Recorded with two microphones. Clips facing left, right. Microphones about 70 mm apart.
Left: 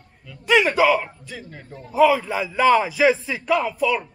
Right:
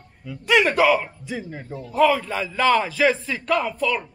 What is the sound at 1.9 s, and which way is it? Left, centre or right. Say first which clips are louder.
A man's voice: left 2 dB; centre.